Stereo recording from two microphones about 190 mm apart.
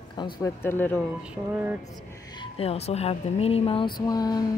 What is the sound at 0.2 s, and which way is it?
Speech, 15° left (ahead or behind).